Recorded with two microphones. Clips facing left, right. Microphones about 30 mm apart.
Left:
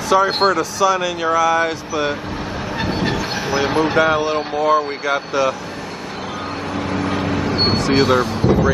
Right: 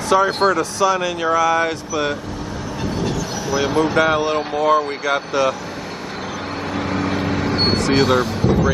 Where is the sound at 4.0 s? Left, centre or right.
Centre.